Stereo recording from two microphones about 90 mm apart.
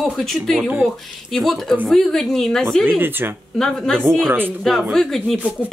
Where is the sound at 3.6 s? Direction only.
5° left (ahead or behind).